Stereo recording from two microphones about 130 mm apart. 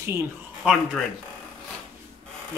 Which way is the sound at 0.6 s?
10° right (ahead or behind).